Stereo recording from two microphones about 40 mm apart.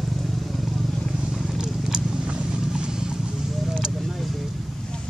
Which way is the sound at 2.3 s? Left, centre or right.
Right.